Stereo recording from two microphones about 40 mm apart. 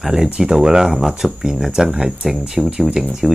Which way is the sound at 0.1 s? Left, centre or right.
Centre.